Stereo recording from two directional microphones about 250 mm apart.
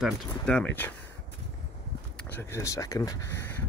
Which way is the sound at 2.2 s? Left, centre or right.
Centre.